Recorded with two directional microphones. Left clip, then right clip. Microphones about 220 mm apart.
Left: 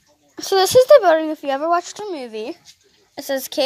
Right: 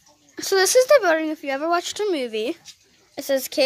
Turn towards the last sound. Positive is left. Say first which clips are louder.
# even
turn(degrees=0)  # may be behind; listen again after turning